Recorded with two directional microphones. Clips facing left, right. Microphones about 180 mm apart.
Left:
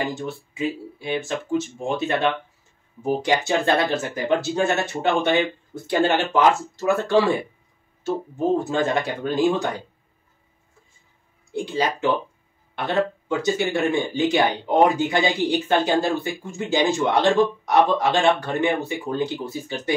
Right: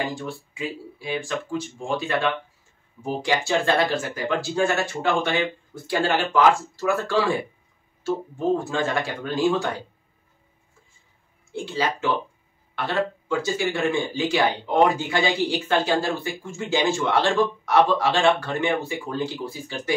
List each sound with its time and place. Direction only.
0.1 s speech: 20° left (ahead or behind)
11.5 s speech: 15° left (ahead or behind)